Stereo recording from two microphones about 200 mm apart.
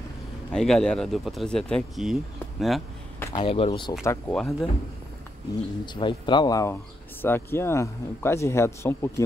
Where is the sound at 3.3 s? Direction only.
30° left (ahead or behind).